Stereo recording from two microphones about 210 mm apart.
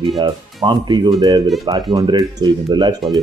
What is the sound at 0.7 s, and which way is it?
Speech, 20° right (ahead or behind).